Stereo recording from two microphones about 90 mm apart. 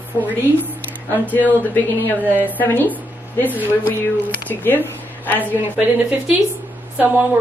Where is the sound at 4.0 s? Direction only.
25° left (ahead or behind).